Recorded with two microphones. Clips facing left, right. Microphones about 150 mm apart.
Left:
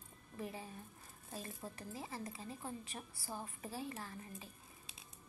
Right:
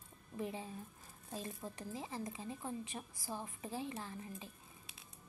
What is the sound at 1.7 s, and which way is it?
A woman's voice, 15° right (ahead or behind).